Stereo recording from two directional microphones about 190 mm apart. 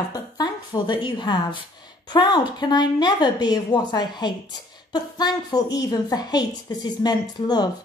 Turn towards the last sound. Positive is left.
turn(degrees=20)  # may be behind; listen again after turning